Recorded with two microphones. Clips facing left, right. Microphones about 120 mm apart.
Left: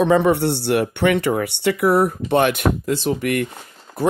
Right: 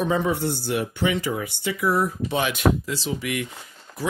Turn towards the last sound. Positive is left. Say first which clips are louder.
# left 8 dB
turn(degrees=55)  # may be behind; listen again after turning